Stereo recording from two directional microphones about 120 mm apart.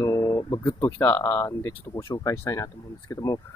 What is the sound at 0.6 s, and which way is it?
Speech, 15° left (ahead or behind).